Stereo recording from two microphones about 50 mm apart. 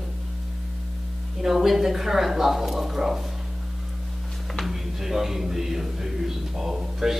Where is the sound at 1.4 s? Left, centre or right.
Centre.